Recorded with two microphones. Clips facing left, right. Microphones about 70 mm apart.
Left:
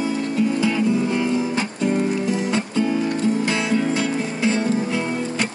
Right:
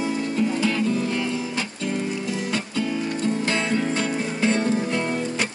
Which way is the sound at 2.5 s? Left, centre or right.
Left.